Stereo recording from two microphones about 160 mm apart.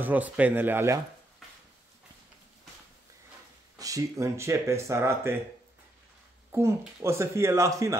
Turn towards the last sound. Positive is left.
turn(degrees=-20)  # may be behind; listen again after turning